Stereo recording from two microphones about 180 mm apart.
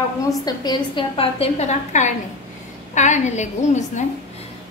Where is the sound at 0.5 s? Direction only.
25° left (ahead or behind); by 4.0 s 40° left (ahead or behind).